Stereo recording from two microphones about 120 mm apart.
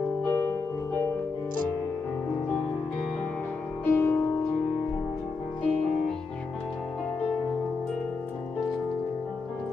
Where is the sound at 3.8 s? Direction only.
15° left (ahead or behind).